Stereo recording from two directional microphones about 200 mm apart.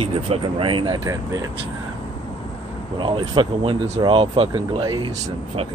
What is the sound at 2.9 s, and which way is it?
Speech, 25° right (ahead or behind).